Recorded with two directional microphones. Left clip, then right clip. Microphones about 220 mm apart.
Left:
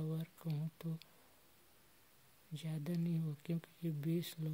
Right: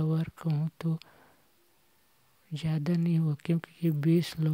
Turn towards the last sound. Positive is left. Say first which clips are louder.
# right 14 dB
turn(degrees=-30)  # may be behind; listen again after turning